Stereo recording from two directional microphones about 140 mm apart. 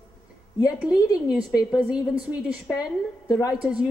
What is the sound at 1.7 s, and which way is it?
A woman's voice, 5° right (ahead or behind).